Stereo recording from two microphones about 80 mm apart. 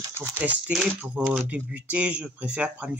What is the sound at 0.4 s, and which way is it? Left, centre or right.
Speech, centre.